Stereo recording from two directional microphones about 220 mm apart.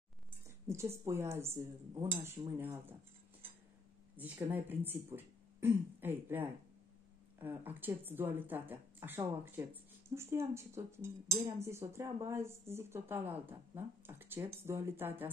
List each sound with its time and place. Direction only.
0.7 s speech: 10° right (ahead or behind)
4.2 s speech: 10° right (ahead or behind)